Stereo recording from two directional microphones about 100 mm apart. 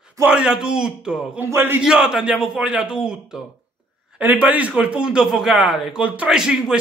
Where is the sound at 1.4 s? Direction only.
25° right (ahead or behind).